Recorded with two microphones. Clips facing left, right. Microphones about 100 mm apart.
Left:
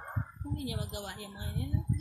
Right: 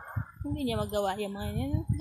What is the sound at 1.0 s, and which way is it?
Speech, 90° right.